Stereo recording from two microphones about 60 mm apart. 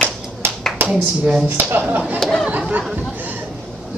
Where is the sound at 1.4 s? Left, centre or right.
Right.